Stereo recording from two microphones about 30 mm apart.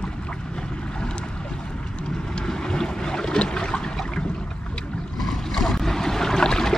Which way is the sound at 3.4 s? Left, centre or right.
Left.